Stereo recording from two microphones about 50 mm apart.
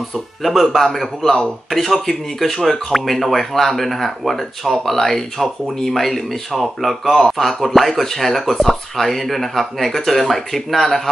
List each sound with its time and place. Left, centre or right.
0.1 s speech: centre